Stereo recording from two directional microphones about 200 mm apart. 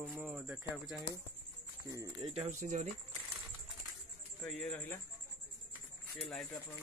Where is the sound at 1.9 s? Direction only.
20° right (ahead or behind).